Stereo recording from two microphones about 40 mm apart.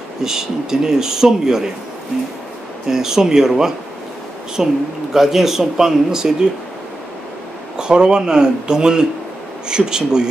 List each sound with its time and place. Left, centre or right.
0.2 s speech: centre
2.9 s speech: centre
7.7 s speech: right